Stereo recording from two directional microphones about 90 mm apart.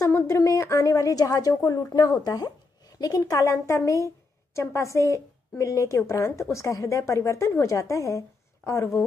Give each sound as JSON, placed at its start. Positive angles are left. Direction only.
{"t": 0.0, "sound": "a woman's voice", "side_deg": 35}